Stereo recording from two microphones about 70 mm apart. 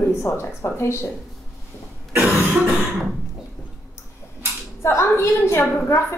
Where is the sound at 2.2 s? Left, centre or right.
Right.